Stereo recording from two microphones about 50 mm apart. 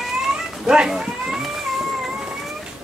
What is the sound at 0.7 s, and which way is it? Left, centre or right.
Speech, centre.